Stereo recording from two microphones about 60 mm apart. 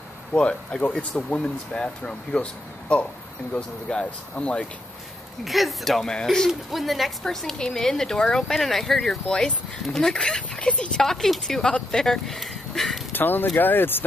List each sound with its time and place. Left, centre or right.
0.3 s a woman's voice: centre
3.5 s speech: centre
5.4 s a woman's voice: centre
13.1 s speech: left